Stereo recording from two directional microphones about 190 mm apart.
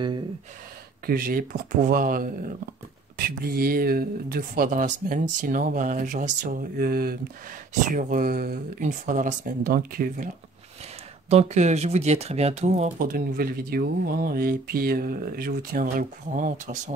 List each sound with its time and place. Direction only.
1.0 s speech: 50° right (ahead or behind)
11.2 s speech: 35° right (ahead or behind)